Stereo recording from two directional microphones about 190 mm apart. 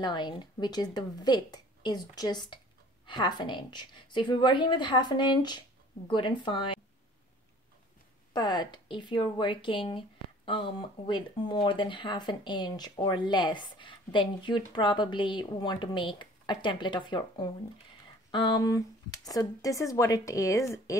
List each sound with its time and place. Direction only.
0.0 s speech: 25° left (ahead or behind)
8.3 s speech: 25° left (ahead or behind)